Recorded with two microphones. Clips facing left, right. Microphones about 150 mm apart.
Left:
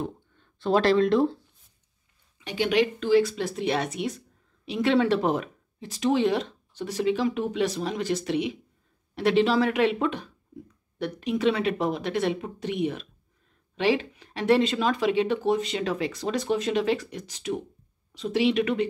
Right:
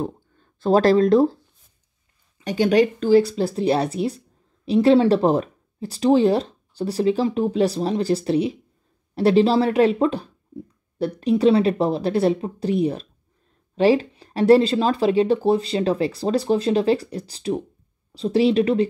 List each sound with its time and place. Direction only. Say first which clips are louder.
0.0 s speech: right 5 dB; 40° right (ahead or behind)